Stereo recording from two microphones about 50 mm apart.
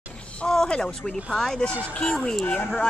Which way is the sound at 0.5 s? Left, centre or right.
Centre.